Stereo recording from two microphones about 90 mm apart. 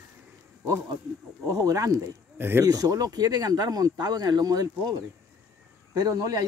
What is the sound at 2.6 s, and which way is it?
Speech, 45° right (ahead or behind).